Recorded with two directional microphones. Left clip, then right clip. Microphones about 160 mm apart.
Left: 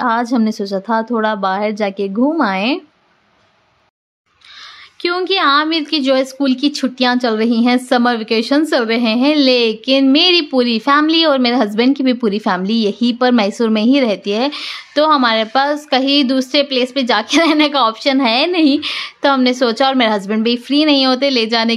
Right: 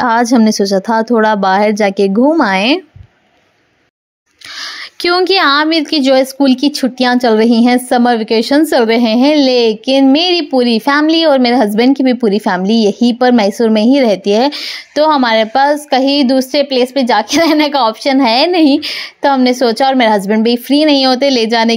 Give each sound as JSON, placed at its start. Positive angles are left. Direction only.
{"t": 0.0, "sound": "a woman's voice", "side_deg": -30}
{"t": 4.6, "sound": "a woman's voice", "side_deg": -40}